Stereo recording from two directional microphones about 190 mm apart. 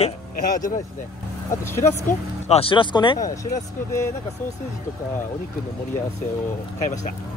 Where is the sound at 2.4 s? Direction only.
30° left (ahead or behind).